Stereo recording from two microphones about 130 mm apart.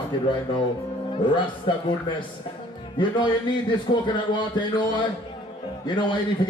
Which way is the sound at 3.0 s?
35° left (ahead or behind).